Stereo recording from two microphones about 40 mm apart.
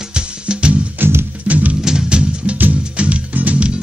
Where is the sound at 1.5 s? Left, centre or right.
Right.